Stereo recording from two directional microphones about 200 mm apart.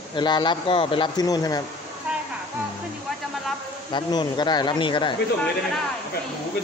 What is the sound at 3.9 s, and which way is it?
Speech, 20° left (ahead or behind).